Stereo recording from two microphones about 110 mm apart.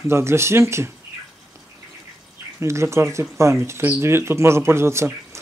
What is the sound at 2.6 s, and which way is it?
Speech, 25° right (ahead or behind).